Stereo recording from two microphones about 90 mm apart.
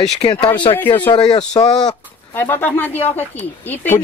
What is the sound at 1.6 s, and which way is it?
Speech, 55° left (ahead or behind).